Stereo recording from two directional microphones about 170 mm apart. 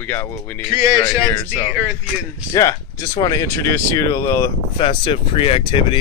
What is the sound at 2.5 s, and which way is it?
Speech, 20° left (ahead or behind).